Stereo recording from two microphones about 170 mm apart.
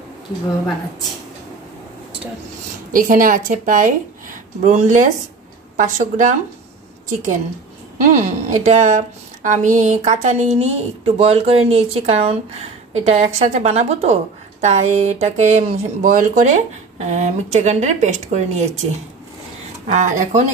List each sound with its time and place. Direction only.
2.9 s a woman's voice: 50° right (ahead or behind)
8.0 s a woman's voice: 45° right (ahead or behind)
19.9 s a woman's voice: 45° right (ahead or behind)